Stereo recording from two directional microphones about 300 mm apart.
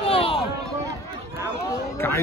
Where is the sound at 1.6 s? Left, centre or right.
Centre.